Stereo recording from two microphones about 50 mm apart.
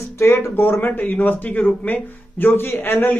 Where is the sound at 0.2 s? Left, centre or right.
Left.